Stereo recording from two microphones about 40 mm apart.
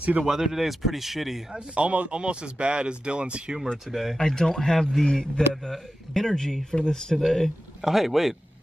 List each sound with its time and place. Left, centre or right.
0.3 s speech: centre
1.5 s speech: right
3.7 s speech: centre
4.2 s speech: centre
5.0 s a man's voice: left
5.5 s speech: centre
7.8 s speech: centre